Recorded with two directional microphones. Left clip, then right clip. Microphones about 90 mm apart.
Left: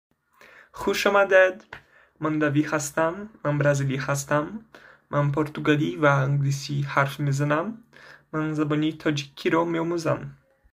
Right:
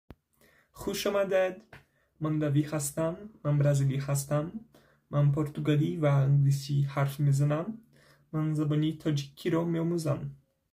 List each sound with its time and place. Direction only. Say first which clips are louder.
0.7 s speech: left 9 dB; 35° right (ahead or behind)
6.3 s speech: left 3 dB; 35° right (ahead or behind)